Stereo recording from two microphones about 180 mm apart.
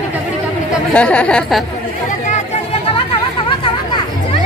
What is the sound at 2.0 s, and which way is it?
Chatter, 45° left (ahead or behind).